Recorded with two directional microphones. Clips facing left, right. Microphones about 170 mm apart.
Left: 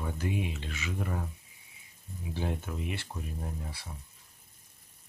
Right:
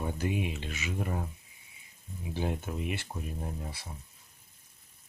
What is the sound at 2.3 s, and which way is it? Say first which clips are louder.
Speech: right 2 dB; 15° right (ahead or behind).